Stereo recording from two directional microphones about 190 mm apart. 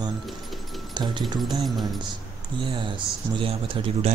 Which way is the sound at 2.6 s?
25° right (ahead or behind).